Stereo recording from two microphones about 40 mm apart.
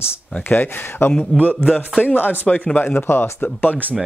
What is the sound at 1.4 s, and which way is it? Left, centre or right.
Speech, left.